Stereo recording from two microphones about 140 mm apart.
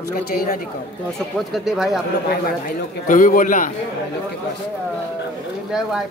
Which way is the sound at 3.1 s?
70° left (ahead or behind).